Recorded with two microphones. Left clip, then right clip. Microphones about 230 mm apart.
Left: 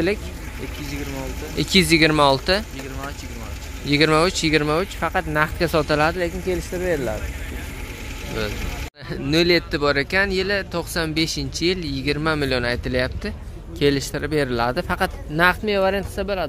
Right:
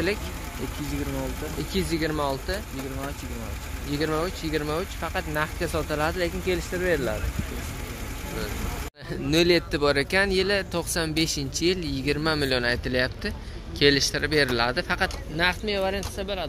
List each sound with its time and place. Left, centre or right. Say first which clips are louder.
1.6 s speech: left 12 dB; left
3.9 s speech: left 10 dB; left
6.1 s speech: left 3 dB; centre
9.1 s speech: left 3 dB; centre; by 16.4 s left